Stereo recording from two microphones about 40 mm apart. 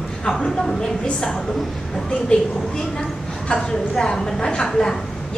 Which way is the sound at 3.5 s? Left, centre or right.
Left.